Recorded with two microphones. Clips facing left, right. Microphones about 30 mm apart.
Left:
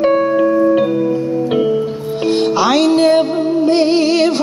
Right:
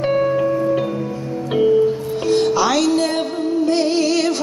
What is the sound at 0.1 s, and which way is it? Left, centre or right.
Music, centre.